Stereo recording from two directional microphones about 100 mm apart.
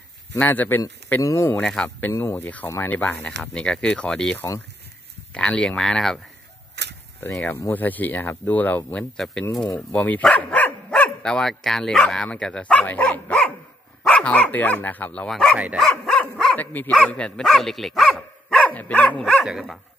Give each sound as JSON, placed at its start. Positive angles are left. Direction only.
{"t": 0.4, "sound": "a man's voice", "side_deg": 20}
{"t": 1.6, "sound": "speech", "side_deg": 5}
{"t": 2.0, "sound": "a man's voice", "side_deg": 20}
{"t": 7.2, "sound": "a man's voice", "side_deg": 20}
{"t": 9.7, "sound": "speech", "side_deg": 15}
{"t": 15.2, "sound": "speech", "side_deg": 5}
{"t": 15.5, "sound": "dog", "side_deg": -15}
{"t": 15.8, "sound": "dog", "side_deg": 5}
{"t": 16.5, "sound": "speech", "side_deg": 15}
{"t": 17.5, "sound": "dog", "side_deg": 0}
{"t": 19.2, "sound": "dog", "side_deg": 0}